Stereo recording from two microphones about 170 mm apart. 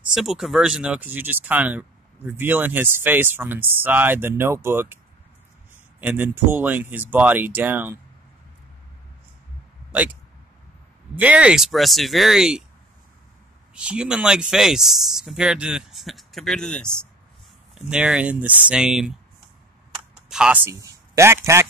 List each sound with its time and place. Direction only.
0.1 s speech: centre (ahead or behind)
5.9 s speech: 10° right (ahead or behind)
11.1 s speech: 5° right (ahead or behind)
13.7 s speech: 5° right (ahead or behind)
20.2 s speech: 5° right (ahead or behind)
20.7 s speech: 20° right (ahead or behind)